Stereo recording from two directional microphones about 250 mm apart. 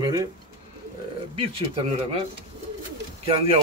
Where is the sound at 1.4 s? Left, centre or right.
Right.